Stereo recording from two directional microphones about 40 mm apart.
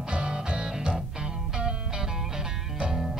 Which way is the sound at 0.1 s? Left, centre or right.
Centre.